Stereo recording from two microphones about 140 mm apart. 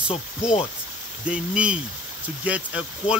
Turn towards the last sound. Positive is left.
turn(degrees=-10)  # may be behind; listen again after turning